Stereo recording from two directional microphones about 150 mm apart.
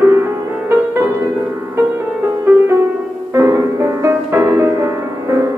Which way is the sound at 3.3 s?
20° right (ahead or behind).